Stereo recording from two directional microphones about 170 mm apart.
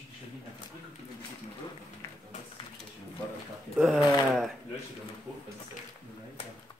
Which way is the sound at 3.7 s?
Centre (ahead or behind).